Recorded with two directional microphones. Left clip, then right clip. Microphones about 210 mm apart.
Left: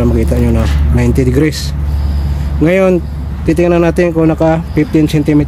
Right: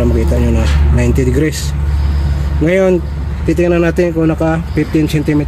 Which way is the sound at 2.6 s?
30° left (ahead or behind).